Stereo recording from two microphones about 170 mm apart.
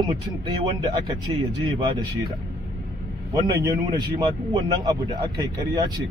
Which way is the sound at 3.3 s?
20° right (ahead or behind).